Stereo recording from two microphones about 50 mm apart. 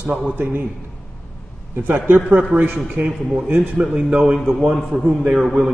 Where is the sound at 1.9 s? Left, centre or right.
Right.